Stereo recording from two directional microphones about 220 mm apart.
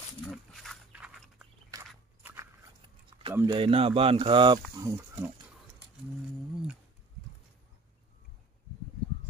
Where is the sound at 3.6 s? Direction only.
25° right (ahead or behind).